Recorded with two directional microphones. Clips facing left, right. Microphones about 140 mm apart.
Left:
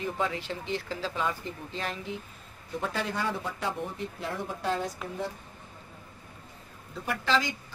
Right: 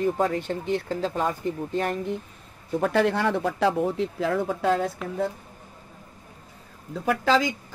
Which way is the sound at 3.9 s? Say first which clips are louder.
Right 10 dB; 90° right.